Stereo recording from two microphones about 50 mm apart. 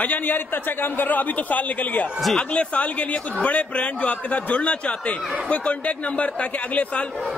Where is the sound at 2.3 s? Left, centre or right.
Left.